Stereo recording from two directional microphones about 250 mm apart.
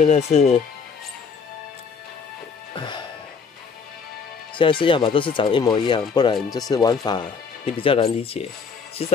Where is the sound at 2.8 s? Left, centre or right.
Centre.